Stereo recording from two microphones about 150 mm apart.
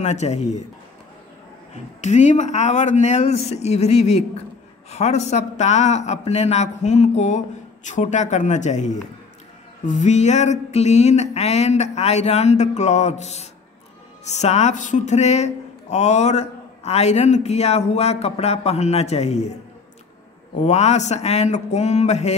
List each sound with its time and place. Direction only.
0.0 s speech: 50° left (ahead or behind)
2.0 s speech: 50° left (ahead or behind)
20.5 s speech: 50° left (ahead or behind)